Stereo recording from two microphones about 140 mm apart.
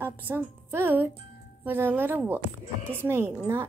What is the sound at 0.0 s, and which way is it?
A woman's voice, 15° right (ahead or behind).